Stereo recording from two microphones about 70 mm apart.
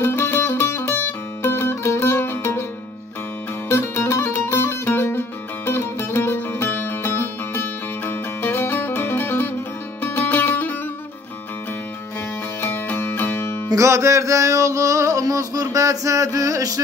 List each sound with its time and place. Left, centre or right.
0.0 s music: left
3.6 s music: left
12.6 s music: left
13.7 s a sound: right